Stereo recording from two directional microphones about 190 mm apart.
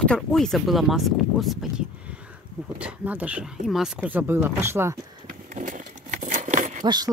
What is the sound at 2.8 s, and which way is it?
Speech, 10° right (ahead or behind).